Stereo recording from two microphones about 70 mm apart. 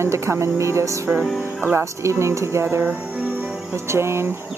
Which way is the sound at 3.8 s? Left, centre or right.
Right.